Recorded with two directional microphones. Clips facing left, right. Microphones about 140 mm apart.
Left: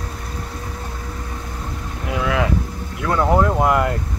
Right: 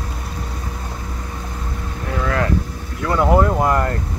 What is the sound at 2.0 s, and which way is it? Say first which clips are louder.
Speech: left 1 dB; 10° left (ahead or behind).